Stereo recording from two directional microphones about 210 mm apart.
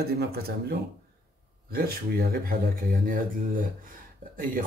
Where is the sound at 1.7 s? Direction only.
45° right (ahead or behind).